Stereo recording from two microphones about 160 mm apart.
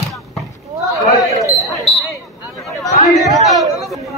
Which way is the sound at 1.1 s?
20° left (ahead or behind).